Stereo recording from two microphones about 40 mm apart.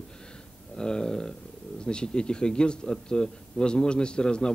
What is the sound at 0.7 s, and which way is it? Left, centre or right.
A man's voice, centre.